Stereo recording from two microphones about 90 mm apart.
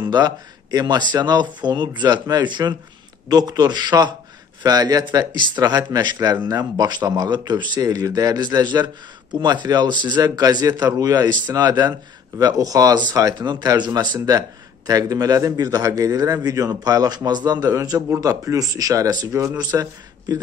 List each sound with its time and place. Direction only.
0.1 s a man's voice: 50° right (ahead or behind)